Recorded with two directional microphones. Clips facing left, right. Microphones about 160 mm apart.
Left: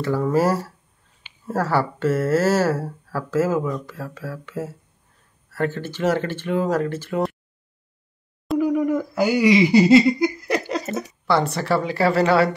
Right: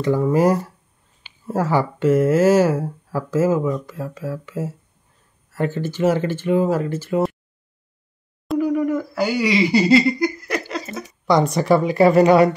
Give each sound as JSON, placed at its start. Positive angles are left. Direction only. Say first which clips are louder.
{"t": 0.0, "sound": "speech", "louder": "right 3 dB", "side_deg": -15}
{"t": 8.5, "sound": "a sound", "louder": "even", "side_deg": 15}
{"t": 9.1, "sound": "speech", "louder": "left 6 dB", "side_deg": 15}
{"t": 11.2, "sound": "speech", "louder": "right 5 dB", "side_deg": -15}